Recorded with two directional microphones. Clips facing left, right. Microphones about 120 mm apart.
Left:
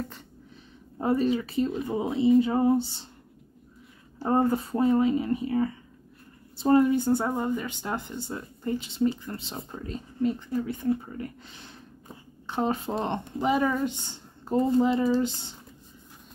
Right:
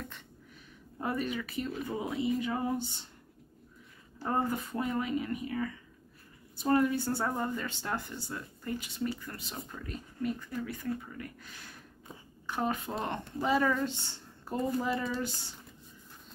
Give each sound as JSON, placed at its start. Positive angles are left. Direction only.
{"t": 0.9, "sound": "speech", "side_deg": 30}
{"t": 4.2, "sound": "speech", "side_deg": 30}